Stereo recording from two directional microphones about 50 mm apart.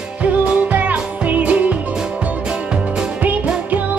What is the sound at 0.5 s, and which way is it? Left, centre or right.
Music, right.